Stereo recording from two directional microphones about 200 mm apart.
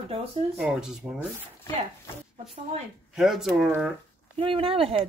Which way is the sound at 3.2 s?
Centre (ahead or behind).